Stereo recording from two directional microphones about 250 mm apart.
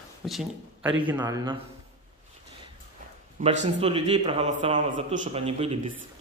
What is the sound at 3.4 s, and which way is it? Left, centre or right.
A man's voice, right.